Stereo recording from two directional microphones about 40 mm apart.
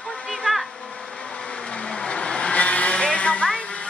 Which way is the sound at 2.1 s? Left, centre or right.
Left.